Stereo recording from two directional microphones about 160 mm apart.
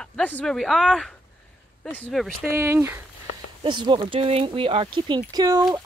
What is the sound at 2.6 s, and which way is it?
Speech, 15° right (ahead or behind).